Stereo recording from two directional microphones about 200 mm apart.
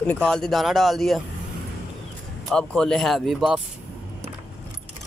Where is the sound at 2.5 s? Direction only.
5° left (ahead or behind).